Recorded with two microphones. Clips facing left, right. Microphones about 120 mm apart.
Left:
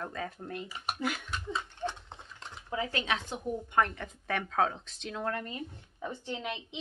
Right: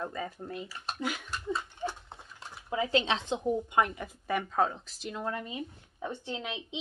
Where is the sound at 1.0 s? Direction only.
5° right (ahead or behind).